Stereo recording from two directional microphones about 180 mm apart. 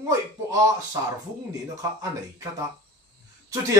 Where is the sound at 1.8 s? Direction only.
20° right (ahead or behind).